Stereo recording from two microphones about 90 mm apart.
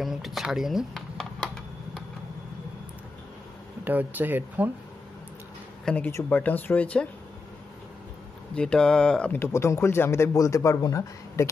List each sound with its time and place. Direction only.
0.0 s computer keyboard: centre (ahead or behind)
3.8 s speech: 20° right (ahead or behind)
5.9 s speech: 15° left (ahead or behind)
8.5 s speech: 10° left (ahead or behind)
9.3 s speech: 30° left (ahead or behind)